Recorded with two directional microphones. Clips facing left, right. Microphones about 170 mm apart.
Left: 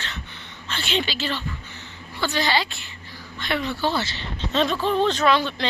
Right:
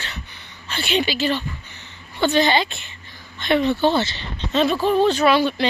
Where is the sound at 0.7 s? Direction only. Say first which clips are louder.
Right 4 dB; 10° right (ahead or behind).